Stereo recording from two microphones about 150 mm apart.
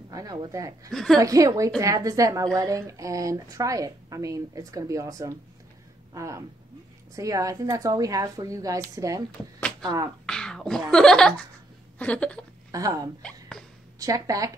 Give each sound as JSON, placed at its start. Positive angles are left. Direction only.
{"t": 0.1, "sound": "a woman's voice", "side_deg": -25}
{"t": 0.9, "sound": "speech", "side_deg": 0}
{"t": 1.2, "sound": "a woman's voice", "side_deg": -20}
{"t": 10.2, "sound": "beatboxing", "side_deg": 5}
{"t": 10.9, "sound": "speech", "side_deg": 5}
{"t": 12.0, "sound": "a sound", "side_deg": 10}
{"t": 12.7, "sound": "a woman's voice", "side_deg": -25}
{"t": 13.2, "sound": "a sound", "side_deg": 5}
{"t": 13.9, "sound": "speech", "side_deg": -25}